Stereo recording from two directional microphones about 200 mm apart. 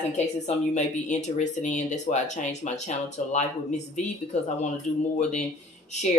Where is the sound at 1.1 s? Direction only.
35° left (ahead or behind).